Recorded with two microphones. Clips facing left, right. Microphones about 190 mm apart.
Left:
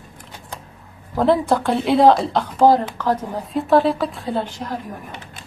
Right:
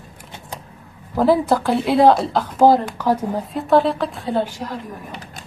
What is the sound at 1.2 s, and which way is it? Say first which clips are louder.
A woman's voice: right 1 dB; centre (ahead or behind).